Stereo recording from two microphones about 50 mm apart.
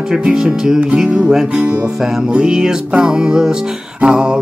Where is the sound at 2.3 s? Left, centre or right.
Centre.